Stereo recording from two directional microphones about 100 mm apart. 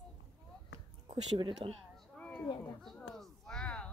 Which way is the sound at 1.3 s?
55° right (ahead or behind).